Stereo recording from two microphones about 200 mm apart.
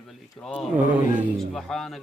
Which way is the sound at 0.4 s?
5° right (ahead or behind).